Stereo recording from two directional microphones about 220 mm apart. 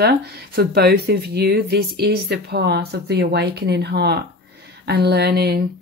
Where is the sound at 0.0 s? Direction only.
45° right (ahead or behind).